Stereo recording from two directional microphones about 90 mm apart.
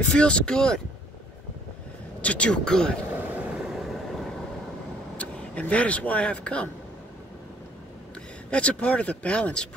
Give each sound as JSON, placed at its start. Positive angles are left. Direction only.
{"t": 0.1, "sound": "speech", "side_deg": 10}
{"t": 2.2, "sound": "speech", "side_deg": 15}
{"t": 3.2, "sound": "vehicle", "side_deg": -15}
{"t": 3.8, "sound": "vehicle", "side_deg": 0}
{"t": 5.1, "sound": "speech", "side_deg": 15}
{"t": 8.5, "sound": "speech", "side_deg": 15}